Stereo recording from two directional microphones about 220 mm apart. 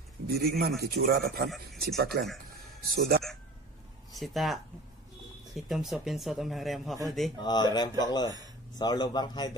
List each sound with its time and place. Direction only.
0.3 s speech: 45° right (ahead or behind)
4.2 s speech: centre (ahead or behind)
5.7 s speech: centre (ahead or behind)
7.3 s a man's voice: 20° left (ahead or behind)